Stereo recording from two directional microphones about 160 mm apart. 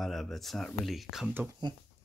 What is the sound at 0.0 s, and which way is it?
Speech, centre (ahead or behind).